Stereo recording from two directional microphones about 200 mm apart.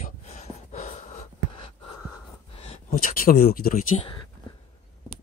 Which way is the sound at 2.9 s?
45° left (ahead or behind).